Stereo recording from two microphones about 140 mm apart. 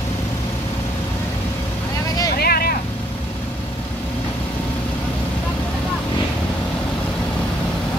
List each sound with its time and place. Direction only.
2.3 s vehicle: 90° left